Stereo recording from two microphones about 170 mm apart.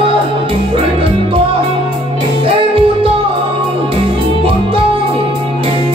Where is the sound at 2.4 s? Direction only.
30° right (ahead or behind).